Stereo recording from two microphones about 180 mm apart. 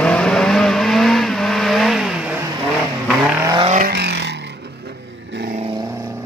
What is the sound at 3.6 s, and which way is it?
Vehicle, 45° right (ahead or behind).